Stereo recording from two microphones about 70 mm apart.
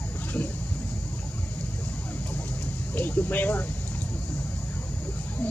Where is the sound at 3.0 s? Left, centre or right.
Left.